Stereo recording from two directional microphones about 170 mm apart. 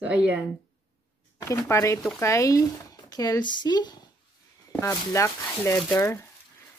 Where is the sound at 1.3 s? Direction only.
20° left (ahead or behind).